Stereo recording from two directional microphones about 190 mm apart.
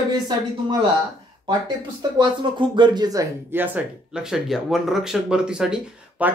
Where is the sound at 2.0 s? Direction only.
20° right (ahead or behind).